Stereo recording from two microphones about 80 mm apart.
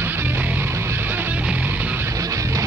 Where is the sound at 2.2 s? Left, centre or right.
Right.